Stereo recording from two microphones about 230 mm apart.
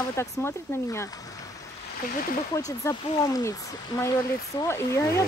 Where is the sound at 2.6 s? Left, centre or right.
Centre.